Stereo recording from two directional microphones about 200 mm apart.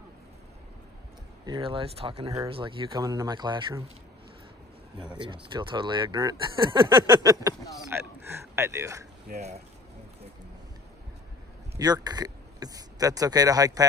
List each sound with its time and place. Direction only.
1.4 s speech: 25° right (ahead or behind)
5.2 s speech: 25° right (ahead or behind)
11.8 s speech: 20° right (ahead or behind)